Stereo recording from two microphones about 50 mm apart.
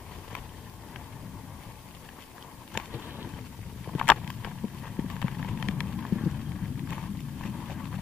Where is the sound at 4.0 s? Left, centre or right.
Centre.